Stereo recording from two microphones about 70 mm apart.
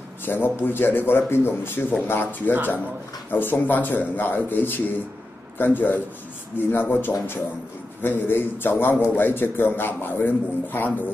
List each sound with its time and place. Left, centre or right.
0.2 s a man's voice: left